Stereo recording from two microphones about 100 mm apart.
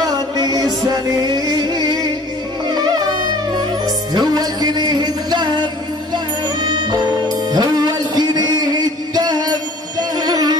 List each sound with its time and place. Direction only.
0.0 s music: 40° right (ahead or behind)